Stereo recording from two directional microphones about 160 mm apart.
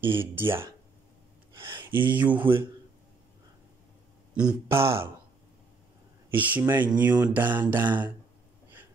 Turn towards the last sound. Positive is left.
turn(degrees=-10)  # may be behind; listen again after turning